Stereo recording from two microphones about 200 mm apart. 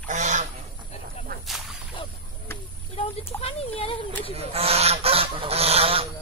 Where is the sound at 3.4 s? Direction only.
30° left (ahead or behind).